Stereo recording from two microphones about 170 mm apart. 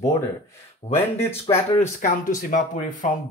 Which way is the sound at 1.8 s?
50° left (ahead or behind).